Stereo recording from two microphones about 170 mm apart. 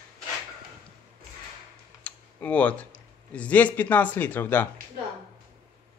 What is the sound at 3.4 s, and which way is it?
Speech, 10° left (ahead or behind).